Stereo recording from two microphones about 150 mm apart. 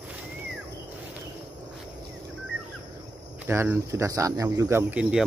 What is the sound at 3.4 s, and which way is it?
Speech, 15° right (ahead or behind).